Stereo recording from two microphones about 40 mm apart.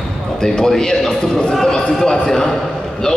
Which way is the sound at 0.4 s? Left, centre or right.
Centre.